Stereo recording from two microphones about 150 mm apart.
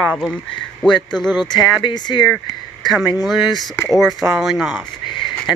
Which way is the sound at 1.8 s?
30° left (ahead or behind).